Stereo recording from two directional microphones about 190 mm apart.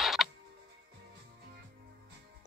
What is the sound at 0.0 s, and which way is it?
Music, centre (ahead or behind).